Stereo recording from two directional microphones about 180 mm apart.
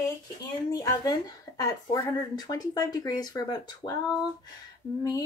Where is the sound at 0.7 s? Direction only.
20° left (ahead or behind).